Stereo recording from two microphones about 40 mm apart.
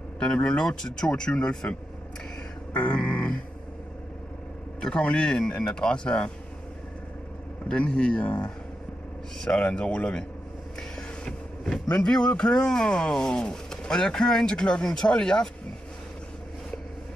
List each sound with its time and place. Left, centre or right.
0.2 s speech: left
2.7 s speech: left
4.7 s speech: left
7.6 s speech: left
9.6 s speech: left
10.8 s a sound: centre
11.9 s speech: left